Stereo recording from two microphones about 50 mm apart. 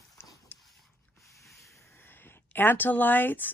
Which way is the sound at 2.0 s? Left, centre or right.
Left.